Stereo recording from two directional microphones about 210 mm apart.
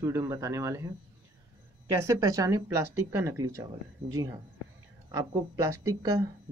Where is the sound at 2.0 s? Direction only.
15° right (ahead or behind).